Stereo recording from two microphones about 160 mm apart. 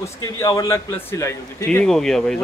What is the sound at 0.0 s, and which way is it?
A man's voice, 20° left (ahead or behind).